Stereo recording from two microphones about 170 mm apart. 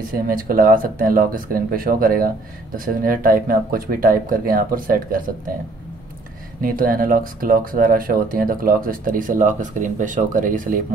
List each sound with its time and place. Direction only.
0.1 s speech: 55° right (ahead or behind)
6.6 s speech: 55° right (ahead or behind)